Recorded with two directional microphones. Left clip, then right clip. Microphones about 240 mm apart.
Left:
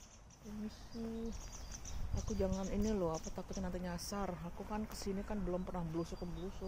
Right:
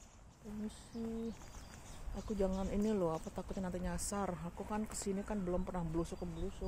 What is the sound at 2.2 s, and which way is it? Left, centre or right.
Speech, centre.